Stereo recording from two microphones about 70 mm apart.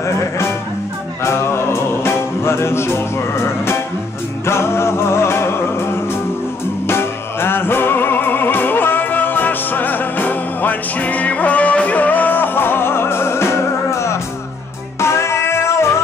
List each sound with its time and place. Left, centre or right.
0.0 s music: left
6.9 s music: left